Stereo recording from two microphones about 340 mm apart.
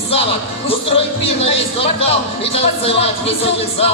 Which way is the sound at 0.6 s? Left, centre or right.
Centre.